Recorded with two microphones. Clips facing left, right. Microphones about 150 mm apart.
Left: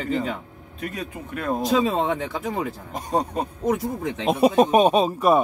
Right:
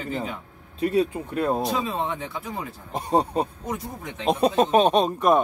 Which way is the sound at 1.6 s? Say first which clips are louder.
Left 5 dB; 85° left.